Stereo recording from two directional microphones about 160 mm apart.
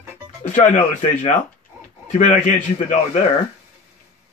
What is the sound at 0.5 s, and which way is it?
Speech, 45° left (ahead or behind).